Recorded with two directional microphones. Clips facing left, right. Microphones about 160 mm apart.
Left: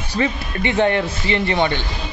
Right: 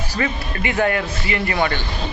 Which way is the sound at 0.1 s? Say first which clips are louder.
Left 4 dB; 25° left (ahead or behind).